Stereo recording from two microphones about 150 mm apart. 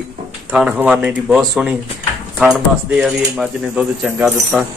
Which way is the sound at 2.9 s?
5° right (ahead or behind).